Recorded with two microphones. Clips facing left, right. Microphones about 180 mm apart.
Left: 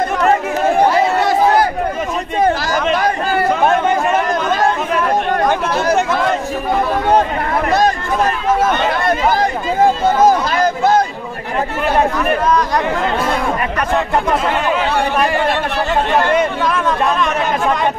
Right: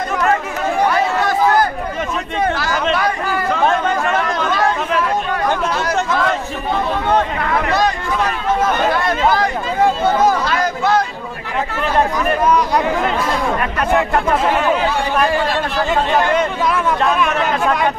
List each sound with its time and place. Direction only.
0.8 s chatter: 25° left (ahead or behind)
2.4 s chatter: 40° left (ahead or behind)
3.6 s chatter: 20° left (ahead or behind)
4.3 s chatter: 45° left (ahead or behind)
7.1 s speech: 40° left (ahead or behind)
9.4 s speech: 45° left (ahead or behind)
12.4 s speech: 10° right (ahead or behind)
16.6 s speech: 10° right (ahead or behind)